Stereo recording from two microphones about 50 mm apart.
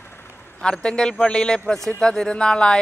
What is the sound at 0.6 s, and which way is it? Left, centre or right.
Speech, centre.